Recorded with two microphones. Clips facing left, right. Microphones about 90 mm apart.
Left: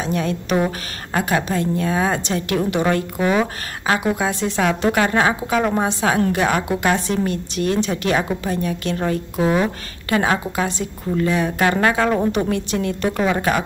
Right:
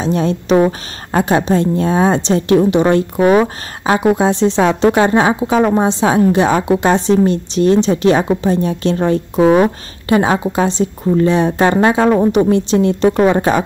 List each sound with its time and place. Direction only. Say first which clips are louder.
0.0 s a woman's voice: right 6 dB; 25° right (ahead or behind)
3.2 s speech: right 8 dB; 45° right (ahead or behind)
3.8 s a woman's voice: right 7 dB; 25° right (ahead or behind)